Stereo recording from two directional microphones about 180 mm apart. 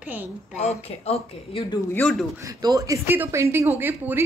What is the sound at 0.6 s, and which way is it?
Speech, 35° left (ahead or behind).